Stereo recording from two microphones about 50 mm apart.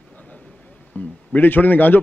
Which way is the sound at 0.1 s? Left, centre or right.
Left.